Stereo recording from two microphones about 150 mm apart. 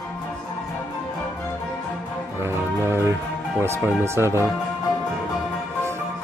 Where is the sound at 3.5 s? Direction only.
15° right (ahead or behind).